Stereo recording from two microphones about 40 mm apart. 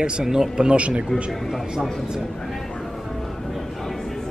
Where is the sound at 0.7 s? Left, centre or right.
Right.